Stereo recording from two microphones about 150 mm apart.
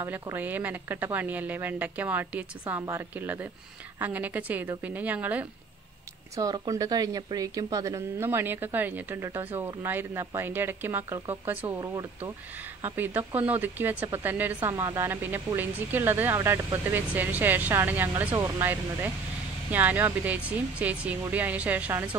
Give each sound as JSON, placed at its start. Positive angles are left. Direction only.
{"t": 0.0, "sound": "speech", "side_deg": -15}
{"t": 6.3, "sound": "speech", "side_deg": -25}
{"t": 12.8, "sound": "speech", "side_deg": -15}